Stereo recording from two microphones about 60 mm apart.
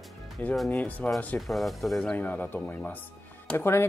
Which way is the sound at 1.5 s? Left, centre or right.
Centre.